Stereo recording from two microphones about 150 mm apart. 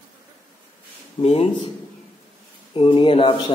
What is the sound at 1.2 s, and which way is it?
Speech, 40° left (ahead or behind).